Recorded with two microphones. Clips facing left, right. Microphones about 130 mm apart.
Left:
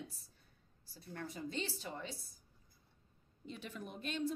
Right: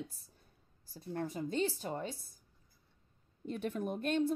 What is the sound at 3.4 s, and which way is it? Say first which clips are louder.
Speech: right 10 dB; 50° right (ahead or behind).